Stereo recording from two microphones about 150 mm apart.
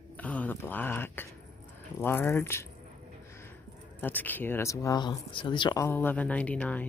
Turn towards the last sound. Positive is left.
turn(degrees=10)  # may be behind; listen again after turning